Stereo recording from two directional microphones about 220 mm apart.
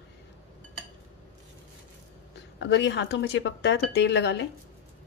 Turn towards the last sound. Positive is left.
turn(degrees=50)  # may be behind; listen again after turning